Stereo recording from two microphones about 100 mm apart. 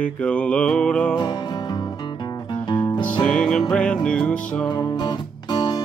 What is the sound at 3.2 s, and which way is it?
Music, 10° left (ahead or behind).